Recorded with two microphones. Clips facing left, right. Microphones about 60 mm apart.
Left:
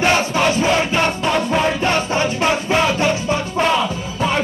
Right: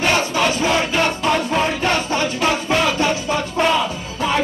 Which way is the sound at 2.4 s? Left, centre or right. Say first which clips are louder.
Left 1 dB; centre.